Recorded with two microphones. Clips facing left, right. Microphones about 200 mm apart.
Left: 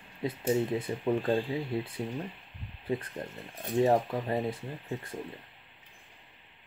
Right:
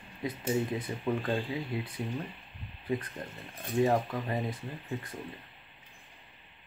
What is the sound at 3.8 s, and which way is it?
Speech, 25° left (ahead or behind).